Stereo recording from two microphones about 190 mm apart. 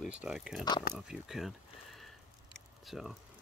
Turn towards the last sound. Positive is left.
turn(degrees=0)  # may be behind; listen again after turning